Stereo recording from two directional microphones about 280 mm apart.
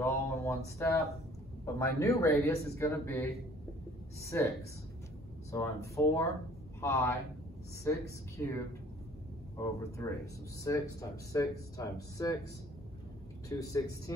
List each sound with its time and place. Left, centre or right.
0.0 s speech: centre
5.5 s speech: centre
9.6 s speech: centre
13.5 s speech: centre